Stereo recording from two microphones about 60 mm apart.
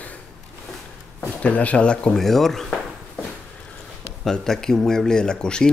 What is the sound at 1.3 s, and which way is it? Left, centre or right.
Speech, left.